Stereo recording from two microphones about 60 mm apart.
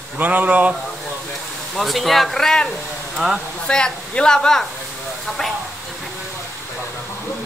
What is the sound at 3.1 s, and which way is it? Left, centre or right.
Speech, centre.